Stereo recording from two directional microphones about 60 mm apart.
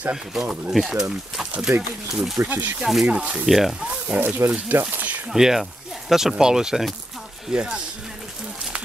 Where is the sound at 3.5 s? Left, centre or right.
Centre.